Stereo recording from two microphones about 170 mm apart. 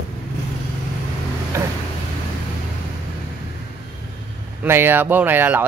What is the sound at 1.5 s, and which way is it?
Speech, 15° right (ahead or behind).